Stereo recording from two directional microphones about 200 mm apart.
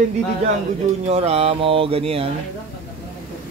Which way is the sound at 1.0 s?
30° right (ahead or behind).